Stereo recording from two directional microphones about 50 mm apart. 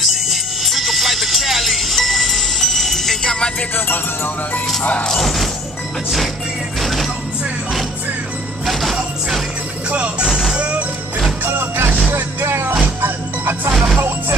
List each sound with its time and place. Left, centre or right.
0.0 s music: centre
3.7 s music: left
5.0 s music: centre
6.8 s music: centre
8.6 s jingle bell: centre
9.8 s music: right
10.2 s music: centre
10.5 s music: right
11.4 s music: right
12.1 s vehicle: right
12.8 s music: right